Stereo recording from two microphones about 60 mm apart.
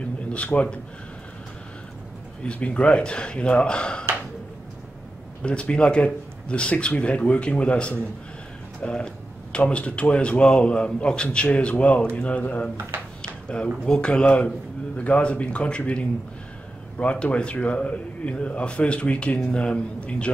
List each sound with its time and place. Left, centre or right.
0.3 s a man's voice: left
2.4 s speech: centre
5.4 s speech: centre
8.8 s a sound: centre
9.7 s a man's voice: centre
13.2 s a sound: centre
13.8 s a man's voice: centre